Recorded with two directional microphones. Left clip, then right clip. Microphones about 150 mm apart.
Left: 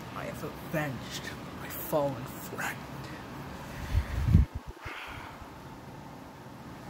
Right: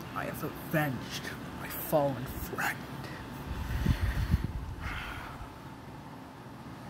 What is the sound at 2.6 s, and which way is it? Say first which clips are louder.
Speech: right 3 dB; 10° right (ahead or behind).